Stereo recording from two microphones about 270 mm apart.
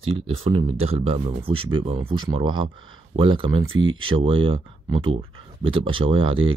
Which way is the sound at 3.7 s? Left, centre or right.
Right.